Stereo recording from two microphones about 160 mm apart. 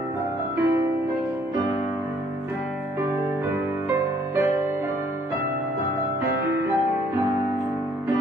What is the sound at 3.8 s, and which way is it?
Music, 20° right (ahead or behind).